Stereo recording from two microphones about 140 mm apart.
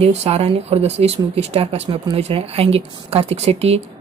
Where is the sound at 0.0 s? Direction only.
45° right (ahead or behind).